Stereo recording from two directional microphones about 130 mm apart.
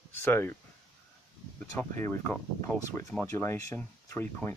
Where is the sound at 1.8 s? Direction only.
20° left (ahead or behind).